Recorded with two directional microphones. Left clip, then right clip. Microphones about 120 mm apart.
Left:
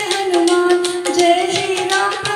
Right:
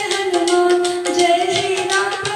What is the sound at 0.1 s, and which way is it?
Music, 40° left (ahead or behind).